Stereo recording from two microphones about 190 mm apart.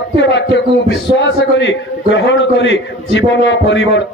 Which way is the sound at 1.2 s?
70° left (ahead or behind).